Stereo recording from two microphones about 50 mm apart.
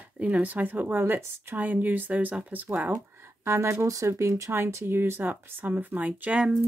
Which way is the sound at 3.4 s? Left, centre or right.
Right.